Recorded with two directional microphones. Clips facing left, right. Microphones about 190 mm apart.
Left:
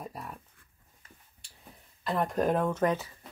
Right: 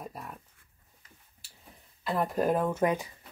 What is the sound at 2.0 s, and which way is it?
Speech, 5° right (ahead or behind).